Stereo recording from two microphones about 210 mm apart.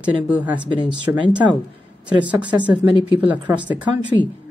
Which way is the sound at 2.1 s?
5° right (ahead or behind).